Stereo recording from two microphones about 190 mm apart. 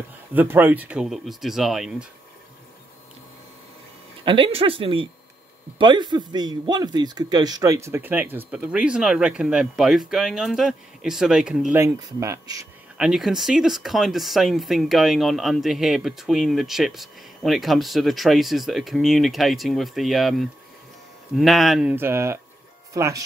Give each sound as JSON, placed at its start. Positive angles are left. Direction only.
{"t": 0.3, "sound": "speech", "side_deg": -10}
{"t": 4.2, "sound": "a man's voice", "side_deg": -25}
{"t": 11.8, "sound": "a man's voice", "side_deg": -15}
{"t": 12.9, "sound": "a man's voice", "side_deg": -5}